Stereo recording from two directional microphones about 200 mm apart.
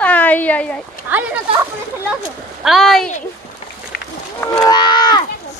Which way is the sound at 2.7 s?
Centre (ahead or behind).